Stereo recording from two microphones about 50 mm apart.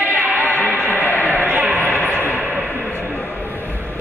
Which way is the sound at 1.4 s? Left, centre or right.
Right.